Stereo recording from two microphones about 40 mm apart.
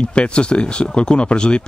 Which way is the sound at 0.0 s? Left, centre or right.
Left.